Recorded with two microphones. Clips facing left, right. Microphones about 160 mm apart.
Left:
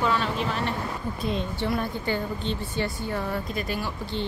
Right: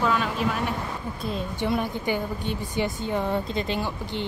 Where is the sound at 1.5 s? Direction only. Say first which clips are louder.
Right 2 dB; 15° right (ahead or behind).